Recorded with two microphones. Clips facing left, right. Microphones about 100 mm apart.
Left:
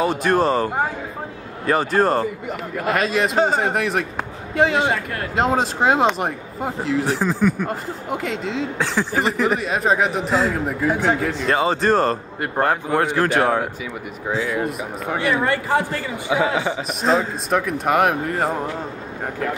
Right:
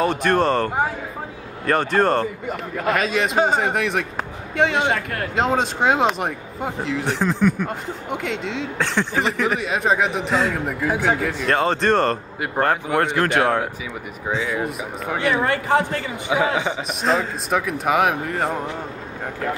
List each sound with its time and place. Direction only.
0.0 s speech: centre (ahead or behind)
16.3 s a man's voice: 20° right (ahead or behind)
17.0 s speech: centre (ahead or behind)